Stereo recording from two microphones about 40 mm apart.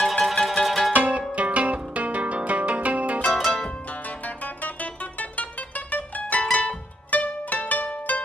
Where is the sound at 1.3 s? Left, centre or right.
Right.